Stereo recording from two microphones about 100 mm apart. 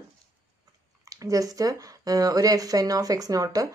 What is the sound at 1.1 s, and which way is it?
Speech, 35° right (ahead or behind).